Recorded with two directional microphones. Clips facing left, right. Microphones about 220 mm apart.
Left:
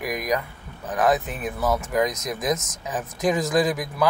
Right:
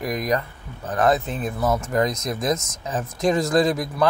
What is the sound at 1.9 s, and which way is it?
Speech, 15° left (ahead or behind).